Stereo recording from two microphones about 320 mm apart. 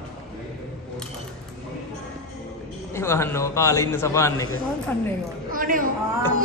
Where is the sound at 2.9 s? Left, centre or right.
Centre.